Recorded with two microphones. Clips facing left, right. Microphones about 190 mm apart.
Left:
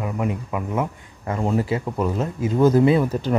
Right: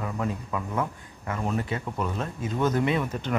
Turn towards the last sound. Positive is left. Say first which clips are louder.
# left 8 dB
turn(degrees=35)  # may be behind; listen again after turning